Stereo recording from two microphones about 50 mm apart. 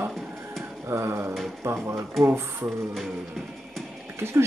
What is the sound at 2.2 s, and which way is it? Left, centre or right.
Speech, right.